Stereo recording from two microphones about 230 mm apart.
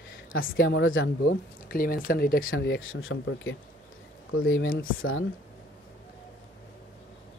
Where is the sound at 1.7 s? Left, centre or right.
Left.